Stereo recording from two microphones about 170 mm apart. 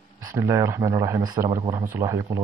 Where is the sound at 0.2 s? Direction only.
20° right (ahead or behind).